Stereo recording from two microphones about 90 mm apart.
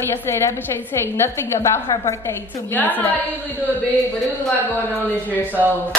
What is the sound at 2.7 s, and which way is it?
Speech, 20° left (ahead or behind).